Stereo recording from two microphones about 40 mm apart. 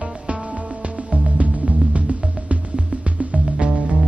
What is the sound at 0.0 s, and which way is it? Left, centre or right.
Music, right.